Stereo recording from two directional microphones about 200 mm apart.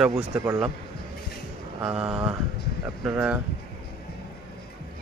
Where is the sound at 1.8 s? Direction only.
5° right (ahead or behind).